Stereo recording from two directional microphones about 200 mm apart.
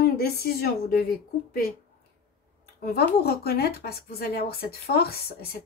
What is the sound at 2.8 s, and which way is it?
Speech, 50° left (ahead or behind).